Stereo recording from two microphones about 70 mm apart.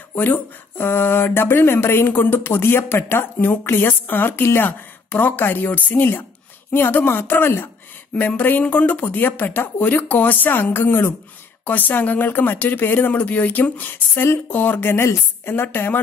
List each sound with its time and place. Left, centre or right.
0.1 s speech: left
8.1 s speech: left